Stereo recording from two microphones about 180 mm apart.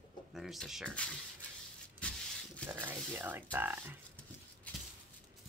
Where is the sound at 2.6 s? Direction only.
10° right (ahead or behind).